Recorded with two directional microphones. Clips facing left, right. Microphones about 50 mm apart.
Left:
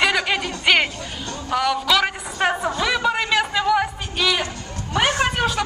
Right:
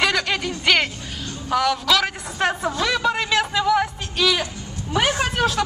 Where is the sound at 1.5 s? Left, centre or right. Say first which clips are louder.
Even; centre.